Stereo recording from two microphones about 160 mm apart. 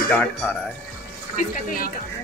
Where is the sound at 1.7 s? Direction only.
60° left (ahead or behind).